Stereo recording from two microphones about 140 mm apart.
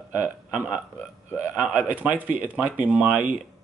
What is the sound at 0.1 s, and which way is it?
Speech, 10° right (ahead or behind).